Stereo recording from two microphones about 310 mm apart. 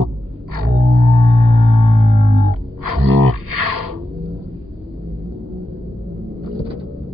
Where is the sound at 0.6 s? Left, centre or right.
Right.